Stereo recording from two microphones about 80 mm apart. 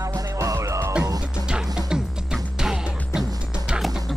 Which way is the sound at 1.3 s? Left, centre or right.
Centre.